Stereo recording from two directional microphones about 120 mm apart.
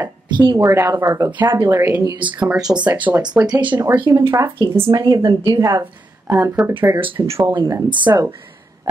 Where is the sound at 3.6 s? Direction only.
40° right (ahead or behind); by 6.5 s 25° right (ahead or behind).